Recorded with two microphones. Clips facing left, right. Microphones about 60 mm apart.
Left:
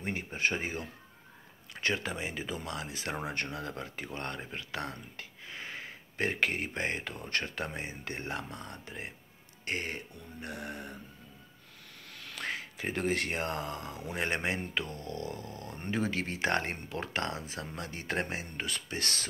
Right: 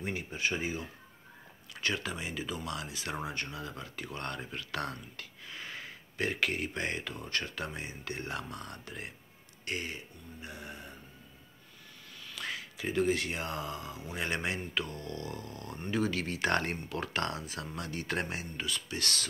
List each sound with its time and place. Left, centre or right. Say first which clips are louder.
0.0 s speech: left 2 dB; left
1.7 s speech: left 2 dB; left
9.7 s speech: left 2 dB; left
12.1 s a sound: left 2 dB; left
12.4 s speech: left 2 dB; left